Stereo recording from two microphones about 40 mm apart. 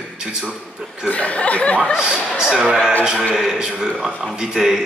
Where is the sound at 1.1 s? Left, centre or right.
Left.